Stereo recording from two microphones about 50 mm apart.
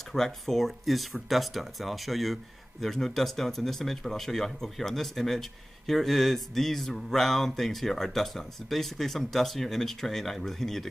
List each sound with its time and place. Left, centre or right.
0.1 s speech: centre